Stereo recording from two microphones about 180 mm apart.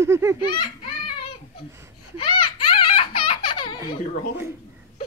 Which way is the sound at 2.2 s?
30° left (ahead or behind).